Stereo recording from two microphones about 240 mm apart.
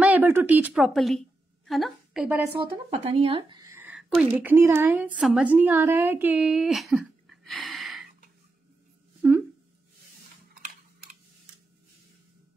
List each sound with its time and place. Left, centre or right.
0.0 s a woman's voice: centre
2.9 s speech: right; by 8.1 s centre
10.5 s typing: right